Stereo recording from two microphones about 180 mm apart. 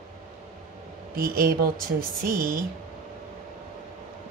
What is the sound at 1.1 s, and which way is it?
Speech, 55° right (ahead or behind).